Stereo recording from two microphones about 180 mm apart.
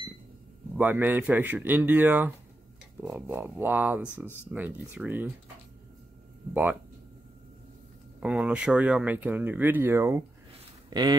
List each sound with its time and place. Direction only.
0.7 s speech: 10° right (ahead or behind)
6.5 s speech: 10° right (ahead or behind)
8.2 s speech: 5° right (ahead or behind); by 11.1 s 20° right (ahead or behind)